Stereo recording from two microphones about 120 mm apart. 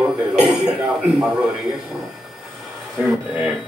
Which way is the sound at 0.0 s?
5° right (ahead or behind).